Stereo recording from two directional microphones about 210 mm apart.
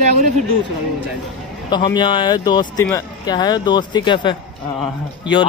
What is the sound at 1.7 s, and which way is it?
A man's voice, 20° left (ahead or behind).